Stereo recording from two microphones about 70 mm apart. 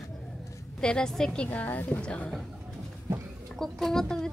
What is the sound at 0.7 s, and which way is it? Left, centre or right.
Speech, centre.